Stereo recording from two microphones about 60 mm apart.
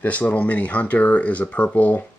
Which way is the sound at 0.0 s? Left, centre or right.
Left.